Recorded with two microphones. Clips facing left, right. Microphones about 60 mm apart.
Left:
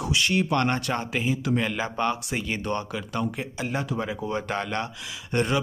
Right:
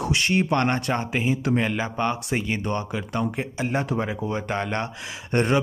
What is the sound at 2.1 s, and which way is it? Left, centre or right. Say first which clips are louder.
Speech: right 3 dB; right.